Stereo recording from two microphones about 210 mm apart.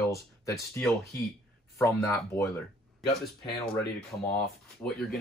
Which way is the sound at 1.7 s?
15° left (ahead or behind).